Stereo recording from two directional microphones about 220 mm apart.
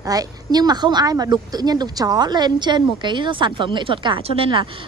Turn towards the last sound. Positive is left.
turn(degrees=-25)  # may be behind; listen again after turning